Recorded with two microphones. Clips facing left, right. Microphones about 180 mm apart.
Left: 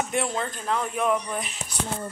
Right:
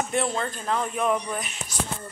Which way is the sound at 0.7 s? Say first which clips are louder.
Even; 5° left (ahead or behind).